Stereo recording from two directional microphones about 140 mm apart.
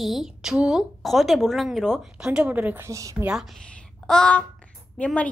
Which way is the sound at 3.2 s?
5° right (ahead or behind).